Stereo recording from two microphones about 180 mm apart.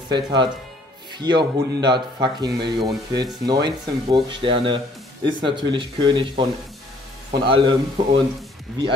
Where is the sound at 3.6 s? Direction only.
25° right (ahead or behind).